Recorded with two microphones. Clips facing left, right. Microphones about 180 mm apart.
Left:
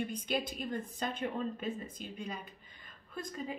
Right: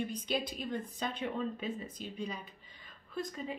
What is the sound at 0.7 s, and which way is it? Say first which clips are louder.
Speech: even; centre (ahead or behind).